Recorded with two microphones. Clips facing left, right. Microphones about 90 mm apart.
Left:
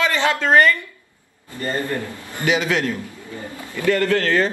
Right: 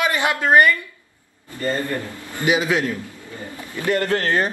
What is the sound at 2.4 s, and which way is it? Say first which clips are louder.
A man's voice: even; 15° right (ahead or behind).